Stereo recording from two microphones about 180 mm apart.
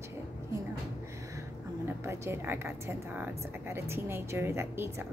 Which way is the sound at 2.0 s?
15° right (ahead or behind).